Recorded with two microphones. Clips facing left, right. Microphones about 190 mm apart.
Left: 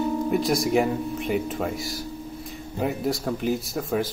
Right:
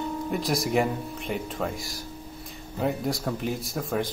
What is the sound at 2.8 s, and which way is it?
Speech, centre (ahead or behind).